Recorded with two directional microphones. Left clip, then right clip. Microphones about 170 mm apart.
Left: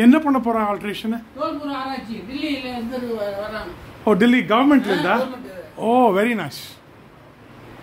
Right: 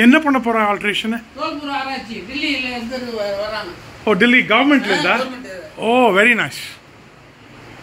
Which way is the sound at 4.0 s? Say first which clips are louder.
Right 4 dB; 20° left (ahead or behind).